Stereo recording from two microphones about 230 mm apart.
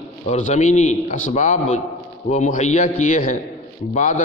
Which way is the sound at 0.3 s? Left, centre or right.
Left.